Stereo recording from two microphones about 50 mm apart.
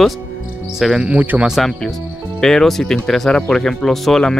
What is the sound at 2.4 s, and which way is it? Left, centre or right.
Speech, centre.